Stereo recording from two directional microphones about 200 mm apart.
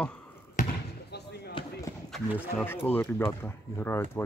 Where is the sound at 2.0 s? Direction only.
Centre (ahead or behind).